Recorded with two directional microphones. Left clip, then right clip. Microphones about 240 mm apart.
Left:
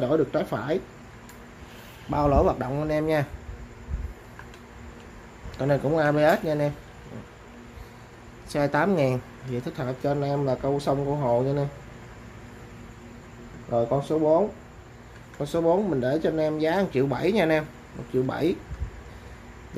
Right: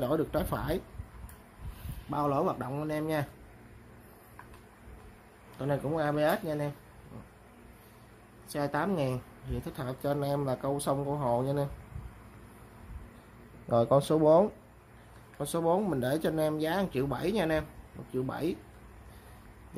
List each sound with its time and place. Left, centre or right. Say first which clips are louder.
0.0 s speech: left 7 dB; centre
2.0 s speech: left 8 dB; centre
5.6 s speech: left 8 dB; centre
8.5 s speech: left 8 dB; centre
13.7 s speech: left 1 dB; right
15.3 s speech: left 6 dB; centre